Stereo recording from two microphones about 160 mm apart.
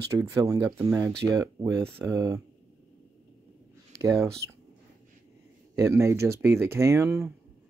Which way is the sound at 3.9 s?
20° right (ahead or behind).